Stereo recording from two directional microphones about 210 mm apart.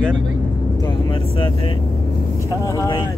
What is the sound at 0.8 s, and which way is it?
Speech, 25° left (ahead or behind).